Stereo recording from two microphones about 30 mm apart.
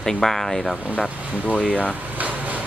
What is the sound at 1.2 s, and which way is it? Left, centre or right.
Speech, right.